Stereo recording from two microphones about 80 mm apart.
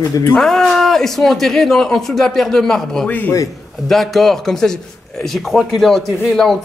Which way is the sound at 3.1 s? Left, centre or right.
Left.